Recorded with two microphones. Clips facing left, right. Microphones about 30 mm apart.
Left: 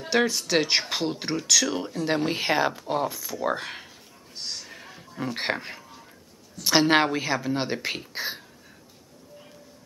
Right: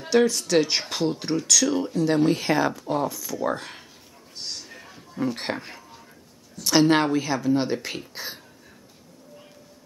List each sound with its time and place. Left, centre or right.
0.1 s speech: centre
2.0 s speech: left
4.4 s a sound: centre
5.4 s speech: centre